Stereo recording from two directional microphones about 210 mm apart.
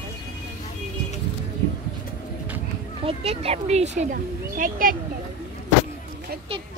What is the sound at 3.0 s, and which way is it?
Speech, 30° right (ahead or behind).